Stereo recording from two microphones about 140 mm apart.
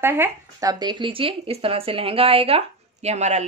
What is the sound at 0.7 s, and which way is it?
Speech, 30° right (ahead or behind).